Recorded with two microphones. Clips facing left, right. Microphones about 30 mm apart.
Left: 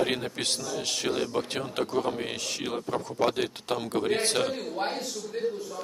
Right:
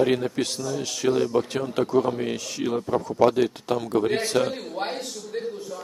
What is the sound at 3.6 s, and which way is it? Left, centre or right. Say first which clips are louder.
Speech: right 4 dB; left.